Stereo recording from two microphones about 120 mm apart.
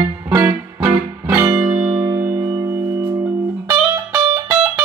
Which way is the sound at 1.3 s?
30° right (ahead or behind).